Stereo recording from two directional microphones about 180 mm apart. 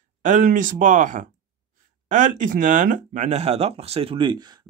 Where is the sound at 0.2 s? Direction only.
45° right (ahead or behind).